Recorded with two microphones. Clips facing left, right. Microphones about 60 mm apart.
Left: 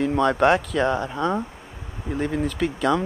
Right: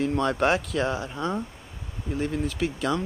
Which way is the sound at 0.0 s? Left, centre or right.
Centre.